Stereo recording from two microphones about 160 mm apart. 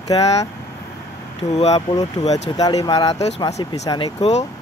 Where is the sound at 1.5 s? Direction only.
45° left (ahead or behind).